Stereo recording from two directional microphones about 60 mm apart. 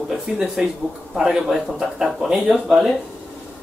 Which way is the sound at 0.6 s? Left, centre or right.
Centre.